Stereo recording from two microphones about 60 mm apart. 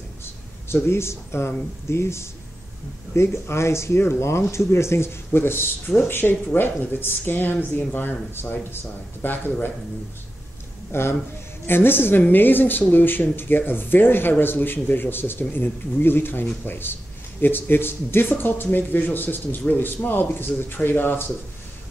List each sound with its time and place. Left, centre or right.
0.2 s a sound: left
1.9 s speech: left
10.9 s speech: left